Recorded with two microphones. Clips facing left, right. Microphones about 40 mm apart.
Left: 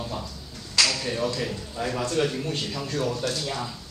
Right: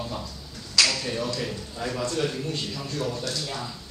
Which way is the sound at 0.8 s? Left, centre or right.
Centre.